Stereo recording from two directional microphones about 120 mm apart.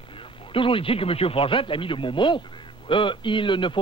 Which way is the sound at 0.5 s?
45° left (ahead or behind).